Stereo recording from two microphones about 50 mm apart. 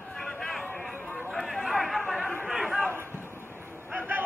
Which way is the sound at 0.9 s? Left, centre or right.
Left.